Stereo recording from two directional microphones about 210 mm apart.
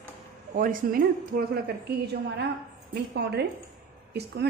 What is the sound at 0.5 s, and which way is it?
A woman's voice, 40° right (ahead or behind).